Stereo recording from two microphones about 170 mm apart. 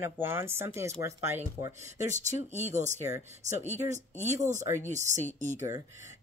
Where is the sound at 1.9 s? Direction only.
45° right (ahead or behind).